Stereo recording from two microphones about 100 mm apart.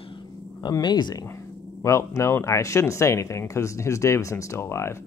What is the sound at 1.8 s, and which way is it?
Speech, 30° left (ahead or behind).